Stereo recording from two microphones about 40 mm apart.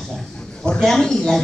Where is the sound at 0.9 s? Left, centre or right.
Centre.